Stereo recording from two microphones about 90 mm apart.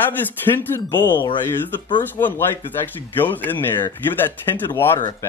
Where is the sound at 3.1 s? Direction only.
20° left (ahead or behind).